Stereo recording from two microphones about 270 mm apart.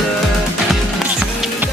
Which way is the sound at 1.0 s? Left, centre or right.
Centre.